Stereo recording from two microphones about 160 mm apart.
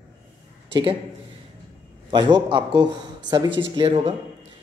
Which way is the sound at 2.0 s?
30° right (ahead or behind).